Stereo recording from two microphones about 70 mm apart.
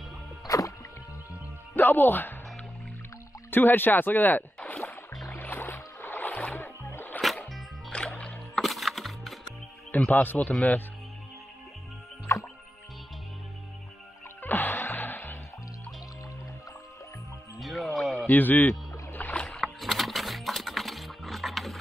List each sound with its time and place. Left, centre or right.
0.5 s music: left
1.8 s speech: left
3.4 s speech: left
5.3 s music: left
8.2 s rowboat: centre
8.6 s music: centre
9.8 s speech: left
12.3 s music: left
14.4 s music: left
17.6 s music: centre
18.3 s rowboat: left
19.3 s rowboat: centre
19.6 s music: centre